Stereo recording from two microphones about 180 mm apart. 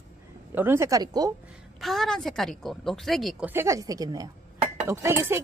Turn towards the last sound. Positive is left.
turn(degrees=-15)  # may be behind; listen again after turning